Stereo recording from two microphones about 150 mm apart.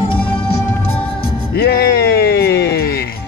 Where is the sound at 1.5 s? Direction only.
90° left.